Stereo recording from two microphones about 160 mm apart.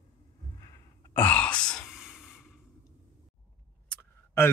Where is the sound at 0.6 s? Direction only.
20° left (ahead or behind).